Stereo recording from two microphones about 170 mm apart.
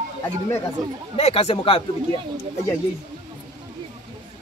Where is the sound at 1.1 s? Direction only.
35° left (ahead or behind).